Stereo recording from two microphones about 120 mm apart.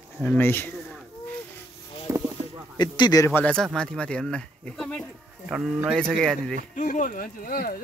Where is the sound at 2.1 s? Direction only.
25° right (ahead or behind).